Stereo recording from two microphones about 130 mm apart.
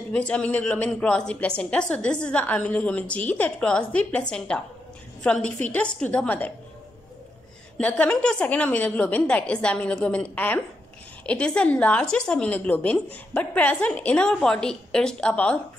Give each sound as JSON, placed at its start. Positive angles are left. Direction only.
{"t": 0.1, "sound": "a woman's voice", "side_deg": 10}
{"t": 7.7, "sound": "a woman's voice", "side_deg": 10}